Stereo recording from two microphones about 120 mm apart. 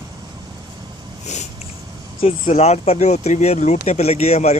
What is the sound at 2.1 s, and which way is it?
Speech, 60° left (ahead or behind).